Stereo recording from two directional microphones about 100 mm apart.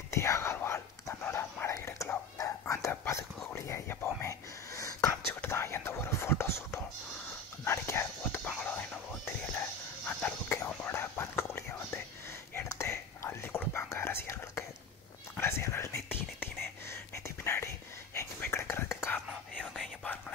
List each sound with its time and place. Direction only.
0.1 s whispering: 30° left (ahead or behind)
5.4 s a sound: 25° left (ahead or behind)
7.6 s whispering: 25° left (ahead or behind)
16.9 s a sound: 25° left (ahead or behind)
18.1 s whispering: 25° left (ahead or behind)
19.7 s whispering: centre (ahead or behind)